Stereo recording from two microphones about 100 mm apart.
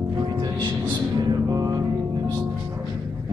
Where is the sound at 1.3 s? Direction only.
35° right (ahead or behind).